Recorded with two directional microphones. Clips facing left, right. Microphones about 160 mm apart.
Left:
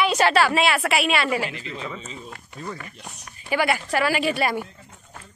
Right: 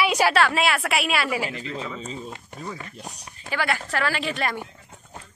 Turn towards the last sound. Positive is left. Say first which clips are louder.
# left 4 dB
turn(degrees=10)  # may be behind; listen again after turning